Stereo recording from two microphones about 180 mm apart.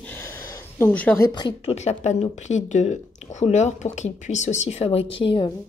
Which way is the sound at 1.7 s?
35° left (ahead or behind).